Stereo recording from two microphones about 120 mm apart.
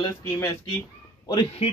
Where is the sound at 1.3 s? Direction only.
40° left (ahead or behind).